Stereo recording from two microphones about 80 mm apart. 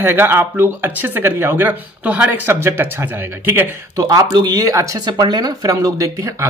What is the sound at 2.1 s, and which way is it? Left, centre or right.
Speech, centre.